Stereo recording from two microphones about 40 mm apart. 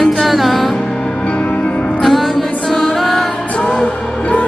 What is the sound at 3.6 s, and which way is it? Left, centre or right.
Music, left.